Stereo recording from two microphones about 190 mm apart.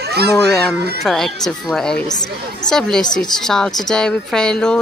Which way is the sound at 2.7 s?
5° left (ahead or behind).